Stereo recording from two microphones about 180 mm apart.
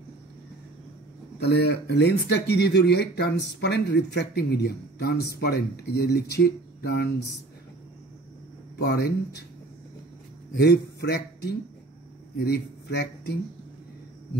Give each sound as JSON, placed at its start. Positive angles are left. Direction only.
{"t": 1.4, "sound": "speech", "side_deg": 65}
{"t": 8.7, "sound": "speech", "side_deg": 65}
{"t": 10.5, "sound": "speech", "side_deg": 65}